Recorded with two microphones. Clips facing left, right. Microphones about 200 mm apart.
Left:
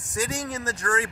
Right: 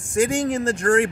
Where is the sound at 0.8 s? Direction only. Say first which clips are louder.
Right 9 dB; 45° right (ahead or behind).